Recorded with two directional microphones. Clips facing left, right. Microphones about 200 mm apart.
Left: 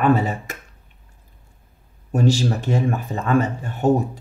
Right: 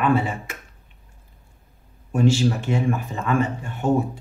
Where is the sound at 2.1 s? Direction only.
40° left (ahead or behind).